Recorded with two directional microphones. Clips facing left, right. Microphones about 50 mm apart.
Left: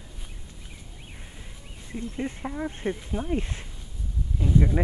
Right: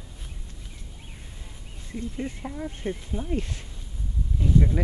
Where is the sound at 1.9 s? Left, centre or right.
Centre.